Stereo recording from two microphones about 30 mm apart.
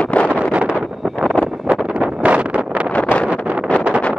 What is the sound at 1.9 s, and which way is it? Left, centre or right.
Wind noise, right.